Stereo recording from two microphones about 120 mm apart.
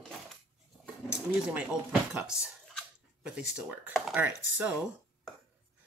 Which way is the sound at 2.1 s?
5° right (ahead or behind).